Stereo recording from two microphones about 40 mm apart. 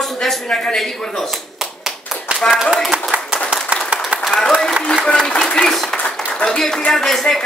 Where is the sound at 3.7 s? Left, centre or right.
Right.